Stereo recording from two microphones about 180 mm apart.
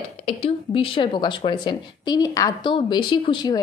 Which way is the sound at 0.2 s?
30° left (ahead or behind).